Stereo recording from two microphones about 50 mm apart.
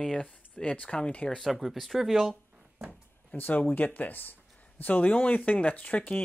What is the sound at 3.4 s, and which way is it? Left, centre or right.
Speech, left.